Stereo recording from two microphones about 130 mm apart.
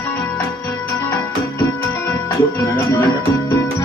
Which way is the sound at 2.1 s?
20° left (ahead or behind).